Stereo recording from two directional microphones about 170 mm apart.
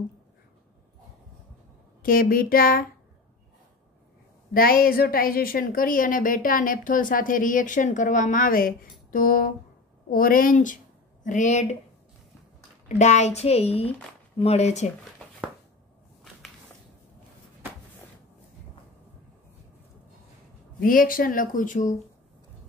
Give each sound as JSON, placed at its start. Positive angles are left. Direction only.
{"t": 2.0, "sound": "speech", "side_deg": 55}
{"t": 4.6, "sound": "a woman's voice", "side_deg": 60}
{"t": 12.8, "sound": "a child's voice", "side_deg": 45}
{"t": 20.8, "sound": "speech", "side_deg": 55}